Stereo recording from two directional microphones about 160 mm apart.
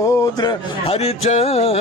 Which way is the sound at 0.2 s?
25° left (ahead or behind).